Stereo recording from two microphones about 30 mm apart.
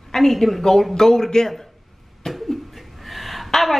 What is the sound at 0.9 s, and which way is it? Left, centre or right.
A woman's voice, centre.